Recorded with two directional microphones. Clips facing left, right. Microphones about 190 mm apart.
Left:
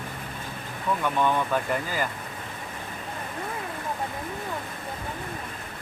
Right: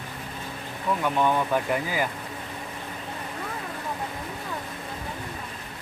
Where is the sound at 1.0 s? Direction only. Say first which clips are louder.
Right 1 dB; 10° right (ahead or behind).